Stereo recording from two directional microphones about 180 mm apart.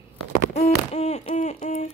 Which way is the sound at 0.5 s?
35° left (ahead or behind).